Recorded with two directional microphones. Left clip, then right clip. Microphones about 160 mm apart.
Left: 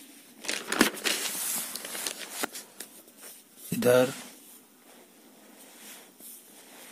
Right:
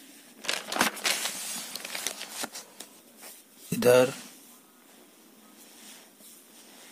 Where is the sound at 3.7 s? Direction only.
15° right (ahead or behind).